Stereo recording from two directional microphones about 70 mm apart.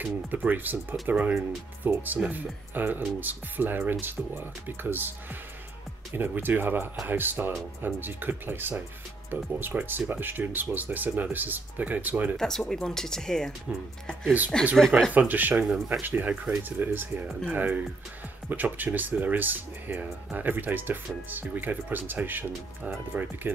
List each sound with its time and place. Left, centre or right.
0.0 s speech: right
12.4 s speech: centre
13.7 s speech: centre
14.8 s speech: centre
15.1 s speech: right